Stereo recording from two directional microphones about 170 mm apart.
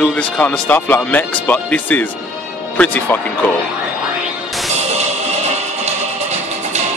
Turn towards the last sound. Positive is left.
turn(degrees=-40)  # may be behind; listen again after turning